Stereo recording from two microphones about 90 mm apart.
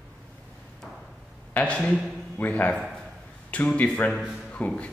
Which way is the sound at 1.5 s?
15° left (ahead or behind).